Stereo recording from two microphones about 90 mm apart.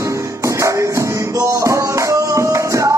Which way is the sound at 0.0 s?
35° right (ahead or behind).